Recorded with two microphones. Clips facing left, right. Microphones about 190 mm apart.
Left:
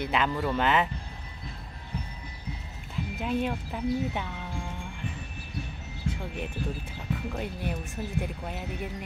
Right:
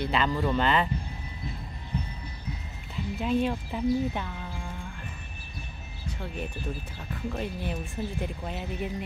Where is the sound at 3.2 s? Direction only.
10° left (ahead or behind).